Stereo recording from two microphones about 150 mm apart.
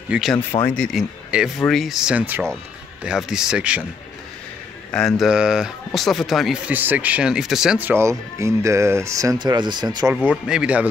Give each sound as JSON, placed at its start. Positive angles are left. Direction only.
{"t": 0.1, "sound": "speech", "side_deg": 0}
{"t": 4.9, "sound": "speech", "side_deg": 0}
{"t": 6.7, "sound": "speech", "side_deg": -10}
{"t": 10.4, "sound": "speech", "side_deg": -5}